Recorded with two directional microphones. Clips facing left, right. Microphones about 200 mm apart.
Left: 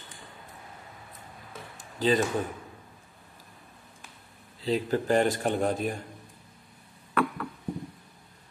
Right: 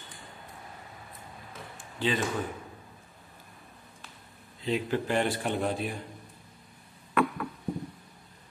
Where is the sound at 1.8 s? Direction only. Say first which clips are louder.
Left 5 dB; 40° left (ahead or behind).